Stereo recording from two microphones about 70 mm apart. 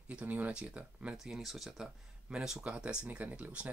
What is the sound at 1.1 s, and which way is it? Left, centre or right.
Speech, centre.